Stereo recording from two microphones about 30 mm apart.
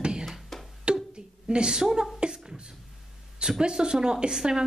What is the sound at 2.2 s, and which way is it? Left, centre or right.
Beatboxing, right.